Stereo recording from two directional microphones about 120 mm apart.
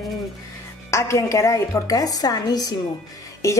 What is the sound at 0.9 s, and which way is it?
A woman's voice, 25° left (ahead or behind).